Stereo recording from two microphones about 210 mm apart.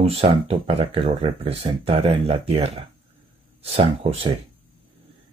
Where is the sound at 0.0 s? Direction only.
25° right (ahead or behind).